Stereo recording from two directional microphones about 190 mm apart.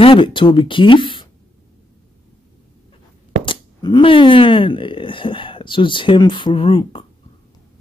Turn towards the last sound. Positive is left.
turn(degrees=25)  # may be behind; listen again after turning